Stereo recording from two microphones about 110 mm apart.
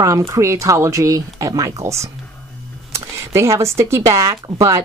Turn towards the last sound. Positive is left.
turn(degrees=-30)  # may be behind; listen again after turning